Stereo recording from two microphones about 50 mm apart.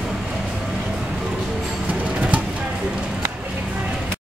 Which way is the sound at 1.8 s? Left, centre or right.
Right.